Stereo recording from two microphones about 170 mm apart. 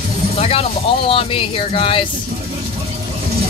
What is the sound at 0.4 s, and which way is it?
Speech, 35° left (ahead or behind).